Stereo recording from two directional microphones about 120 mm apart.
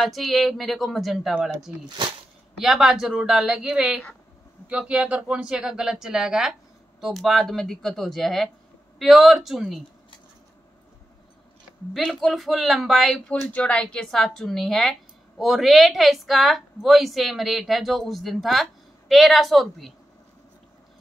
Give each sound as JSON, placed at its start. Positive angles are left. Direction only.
{"t": 0.0, "sound": "speech", "side_deg": 0}
{"t": 2.0, "sound": "speech", "side_deg": -40}
{"t": 2.6, "sound": "speech", "side_deg": -5}
{"t": 11.9, "sound": "speech", "side_deg": 0}
{"t": 13.5, "sound": "speech", "side_deg": 10}